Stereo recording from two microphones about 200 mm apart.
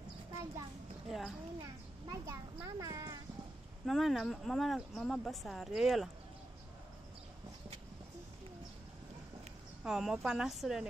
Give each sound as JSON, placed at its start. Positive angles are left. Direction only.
{"t": 1.0, "sound": "speech", "side_deg": 0}
{"t": 2.0, "sound": "a child's voice", "side_deg": -15}
{"t": 3.8, "sound": "speech", "side_deg": 0}
{"t": 9.8, "sound": "speech", "side_deg": 0}